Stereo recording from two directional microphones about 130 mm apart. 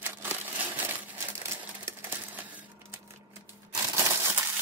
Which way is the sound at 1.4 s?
20° right (ahead or behind).